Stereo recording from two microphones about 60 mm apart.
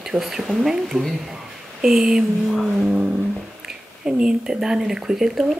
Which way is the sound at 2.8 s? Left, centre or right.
Centre.